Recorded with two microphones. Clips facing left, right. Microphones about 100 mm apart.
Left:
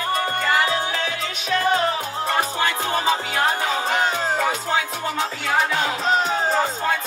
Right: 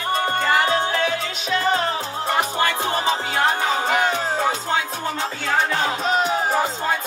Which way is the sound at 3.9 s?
35° left (ahead or behind).